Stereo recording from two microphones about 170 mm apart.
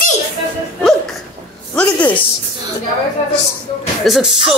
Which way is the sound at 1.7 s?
10° left (ahead or behind).